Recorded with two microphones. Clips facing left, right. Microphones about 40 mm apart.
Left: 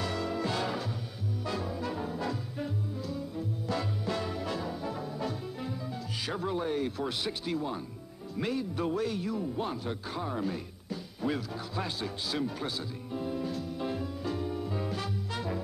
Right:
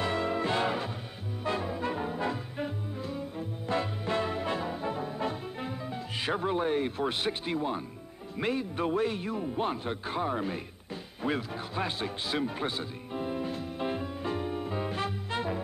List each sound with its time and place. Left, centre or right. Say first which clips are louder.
0.0 s music: right 3 dB; right
1.4 s brass instrument: right 4 dB; right
6.2 s speech: right 4 dB; right
11.2 s music: right 1 dB; right